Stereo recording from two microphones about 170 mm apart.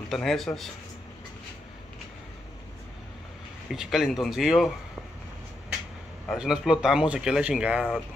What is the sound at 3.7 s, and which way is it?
Speech, centre (ahead or behind).